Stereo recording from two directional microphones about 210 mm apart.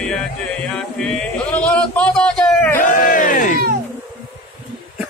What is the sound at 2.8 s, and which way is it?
Crowd, 40° left (ahead or behind).